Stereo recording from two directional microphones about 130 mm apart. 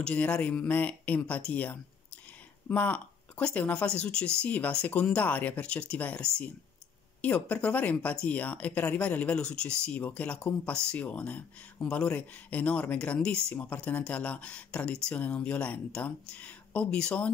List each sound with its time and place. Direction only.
0.0 s speech: 10° left (ahead or behind)